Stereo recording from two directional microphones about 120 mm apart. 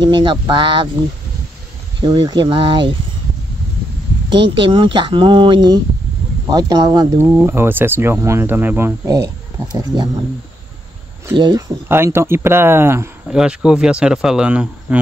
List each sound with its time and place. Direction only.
0.0 s speech: 40° right (ahead or behind)
2.0 s speech: 35° right (ahead or behind)
4.4 s speech: 45° right (ahead or behind)
7.2 s speech: 20° right (ahead or behind)
9.9 s speech: 35° right (ahead or behind)
11.3 s speech: 40° right (ahead or behind)
11.9 s speech: 20° right (ahead or behind)
13.3 s speech: 5° right (ahead or behind)